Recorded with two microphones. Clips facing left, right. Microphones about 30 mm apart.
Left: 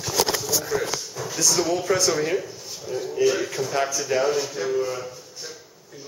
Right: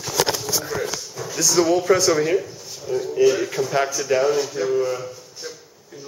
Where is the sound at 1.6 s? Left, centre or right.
Centre.